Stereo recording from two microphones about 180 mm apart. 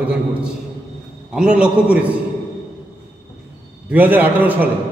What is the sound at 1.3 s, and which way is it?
Speech, 5° right (ahead or behind).